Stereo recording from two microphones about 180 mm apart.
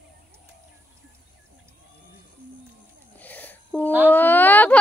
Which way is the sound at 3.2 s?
10° left (ahead or behind).